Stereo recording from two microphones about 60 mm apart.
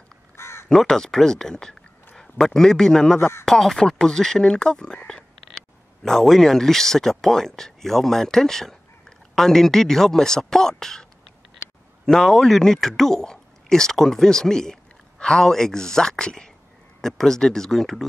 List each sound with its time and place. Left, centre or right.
0.4 s crow: left
0.7 s a man's voice: centre
3.2 s speech: left
3.4 s speech: centre
5.0 s whispering: centre
6.0 s speech: centre
12.1 s speech: centre